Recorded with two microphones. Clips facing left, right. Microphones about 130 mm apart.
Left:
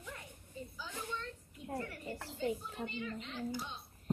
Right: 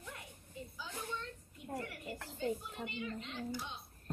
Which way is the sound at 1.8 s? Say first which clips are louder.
Left 2 dB; 15° right (ahead or behind).